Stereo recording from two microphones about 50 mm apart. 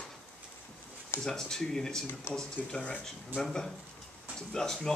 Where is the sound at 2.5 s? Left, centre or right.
Left.